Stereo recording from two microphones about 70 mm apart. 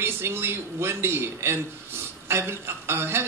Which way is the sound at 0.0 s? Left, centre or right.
Right.